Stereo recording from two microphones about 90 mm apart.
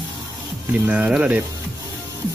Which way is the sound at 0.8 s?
15° right (ahead or behind).